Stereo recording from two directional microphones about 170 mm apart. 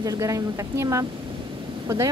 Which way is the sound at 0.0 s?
20° right (ahead or behind).